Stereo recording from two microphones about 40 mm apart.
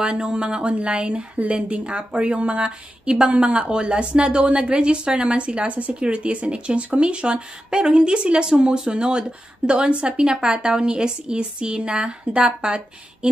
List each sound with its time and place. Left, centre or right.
0.1 s a woman's voice: right
10.1 s a woman's voice: centre